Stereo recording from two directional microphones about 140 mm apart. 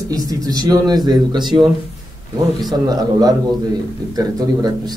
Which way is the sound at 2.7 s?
30° right (ahead or behind).